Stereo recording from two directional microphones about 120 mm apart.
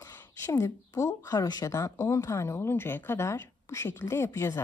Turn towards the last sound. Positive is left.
turn(degrees=25)  # may be behind; listen again after turning